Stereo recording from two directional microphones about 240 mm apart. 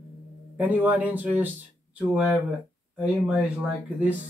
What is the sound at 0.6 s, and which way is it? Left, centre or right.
Speech, centre.